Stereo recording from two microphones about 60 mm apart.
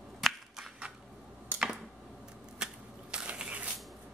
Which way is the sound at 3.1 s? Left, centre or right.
Centre.